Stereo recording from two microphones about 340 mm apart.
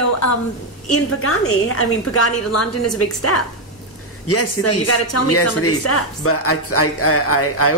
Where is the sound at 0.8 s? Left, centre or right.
Left.